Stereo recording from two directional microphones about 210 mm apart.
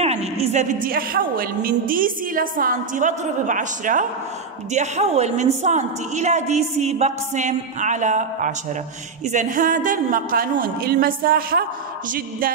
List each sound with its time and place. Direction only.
0.0 s a woman's voice: 30° right (ahead or behind)